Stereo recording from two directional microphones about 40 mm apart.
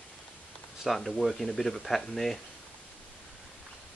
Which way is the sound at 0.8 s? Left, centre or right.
Centre.